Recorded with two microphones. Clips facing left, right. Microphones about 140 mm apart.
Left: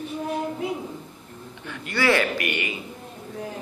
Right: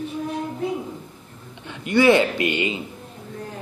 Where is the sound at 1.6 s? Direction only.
20° right (ahead or behind).